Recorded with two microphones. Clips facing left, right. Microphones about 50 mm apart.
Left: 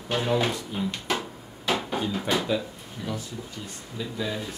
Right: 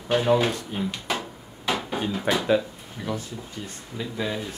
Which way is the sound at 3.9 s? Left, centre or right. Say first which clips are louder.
Right 2 dB; right.